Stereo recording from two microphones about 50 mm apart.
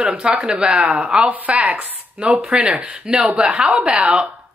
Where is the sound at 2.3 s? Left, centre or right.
Centre.